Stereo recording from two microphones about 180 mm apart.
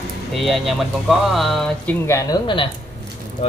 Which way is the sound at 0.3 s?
Centre (ahead or behind).